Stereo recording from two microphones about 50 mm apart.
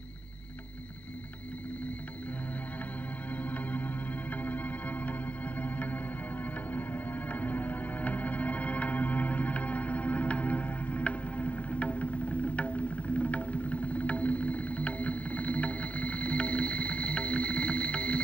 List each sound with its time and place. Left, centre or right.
3.4 s music: left